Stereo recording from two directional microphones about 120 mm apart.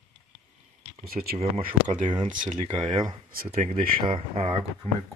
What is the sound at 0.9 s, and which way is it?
Speech, 60° right (ahead or behind).